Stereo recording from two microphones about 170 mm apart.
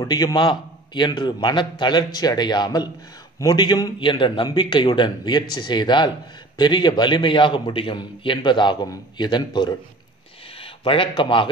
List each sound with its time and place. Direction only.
0.0 s a man's voice: 20° left (ahead or behind)